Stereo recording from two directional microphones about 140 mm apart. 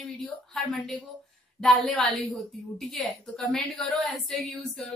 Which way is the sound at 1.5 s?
Centre (ahead or behind).